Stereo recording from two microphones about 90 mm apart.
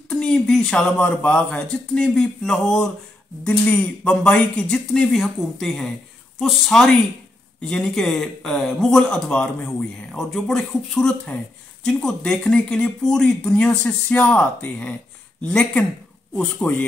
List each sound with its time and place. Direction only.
0.1 s a man's voice: 10° left (ahead or behind); by 16.8 s 25° left (ahead or behind)